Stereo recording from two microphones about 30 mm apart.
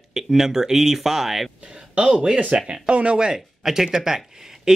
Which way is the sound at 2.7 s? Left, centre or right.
Right.